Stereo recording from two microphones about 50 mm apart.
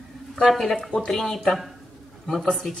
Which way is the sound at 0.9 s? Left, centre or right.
Left.